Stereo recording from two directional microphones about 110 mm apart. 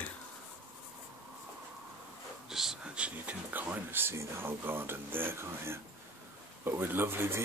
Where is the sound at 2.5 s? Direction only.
5° right (ahead or behind); by 5.7 s 20° right (ahead or behind).